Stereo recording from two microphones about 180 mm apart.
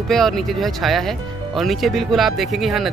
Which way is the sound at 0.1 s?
Centre (ahead or behind).